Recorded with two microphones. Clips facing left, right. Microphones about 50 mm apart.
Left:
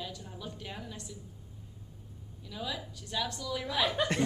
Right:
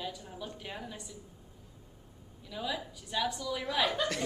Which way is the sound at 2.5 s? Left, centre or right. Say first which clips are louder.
Right 2 dB; centre.